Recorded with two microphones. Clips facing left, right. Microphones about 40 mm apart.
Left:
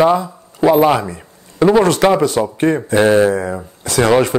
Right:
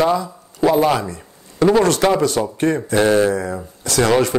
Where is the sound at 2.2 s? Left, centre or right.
Left.